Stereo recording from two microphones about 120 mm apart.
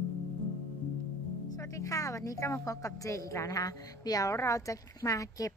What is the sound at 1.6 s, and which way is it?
A woman's voice, 25° left (ahead or behind).